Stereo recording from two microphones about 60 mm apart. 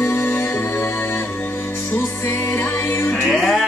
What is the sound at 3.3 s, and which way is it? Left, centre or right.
Music, centre.